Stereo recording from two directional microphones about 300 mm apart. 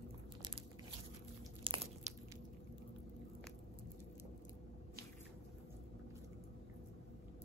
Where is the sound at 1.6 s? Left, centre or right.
Centre.